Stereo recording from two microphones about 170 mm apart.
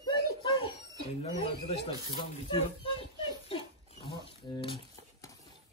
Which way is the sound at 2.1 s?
30° left (ahead or behind).